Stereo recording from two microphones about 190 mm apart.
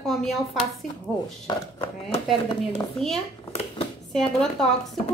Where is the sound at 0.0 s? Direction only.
Centre (ahead or behind).